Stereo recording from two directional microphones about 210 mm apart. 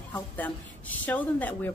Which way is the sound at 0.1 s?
10° left (ahead or behind).